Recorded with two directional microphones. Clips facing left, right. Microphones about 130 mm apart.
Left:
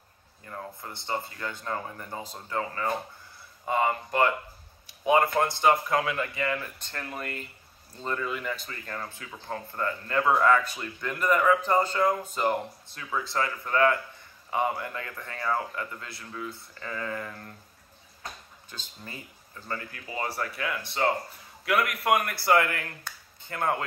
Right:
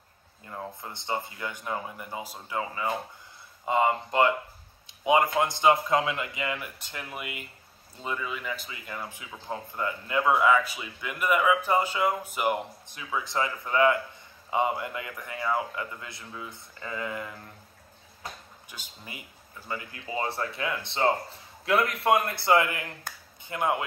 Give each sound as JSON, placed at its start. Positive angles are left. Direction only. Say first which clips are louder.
{"t": 0.5, "sound": "speech", "louder": "right 1 dB", "side_deg": -20}
{"t": 18.7, "sound": "speech", "louder": "left 2 dB", "side_deg": -15}